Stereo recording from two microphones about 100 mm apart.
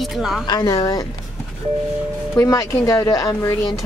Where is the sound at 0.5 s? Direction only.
40° left (ahead or behind).